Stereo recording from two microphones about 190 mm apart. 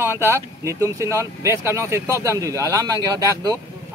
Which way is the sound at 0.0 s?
15° right (ahead or behind).